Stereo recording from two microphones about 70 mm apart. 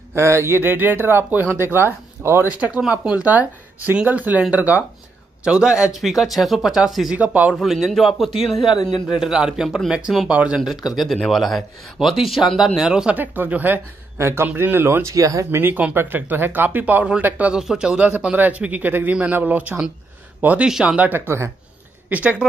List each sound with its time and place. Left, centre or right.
0.1 s speech: right
0.6 s speech: right
2.5 s a man's voice: centre
7.2 s speech: centre
7.6 s a man's voice: centre
10.6 s a man's voice: centre
13.1 s speech: right
15.6 s speech: right
17.6 s speech: centre